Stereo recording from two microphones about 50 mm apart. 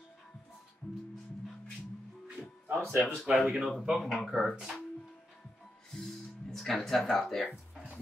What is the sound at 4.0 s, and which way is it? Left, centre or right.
Speech, centre.